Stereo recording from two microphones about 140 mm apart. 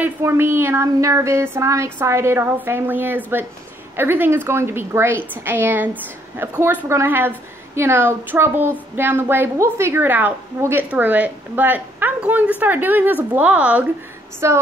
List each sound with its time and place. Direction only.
0.0 s a woman's voice: 20° right (ahead or behind)
14.4 s female singing: 20° right (ahead or behind)